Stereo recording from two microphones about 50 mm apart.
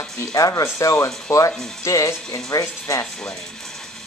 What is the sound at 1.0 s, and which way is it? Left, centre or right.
Speech, left.